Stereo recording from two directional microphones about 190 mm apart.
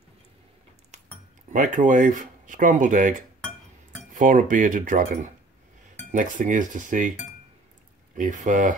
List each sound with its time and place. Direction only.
0.9 s cutlery: 35° right (ahead or behind)
1.5 s speech: 45° right (ahead or behind)
8.2 s speech: 45° right (ahead or behind)